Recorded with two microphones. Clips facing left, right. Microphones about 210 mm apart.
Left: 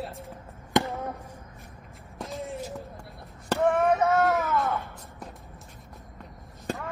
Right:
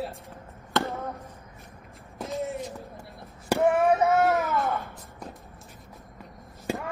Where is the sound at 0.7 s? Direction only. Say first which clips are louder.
Left 3 dB; 15° left (ahead or behind).